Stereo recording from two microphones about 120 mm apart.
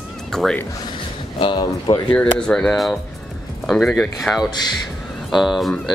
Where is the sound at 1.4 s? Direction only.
45° left (ahead or behind).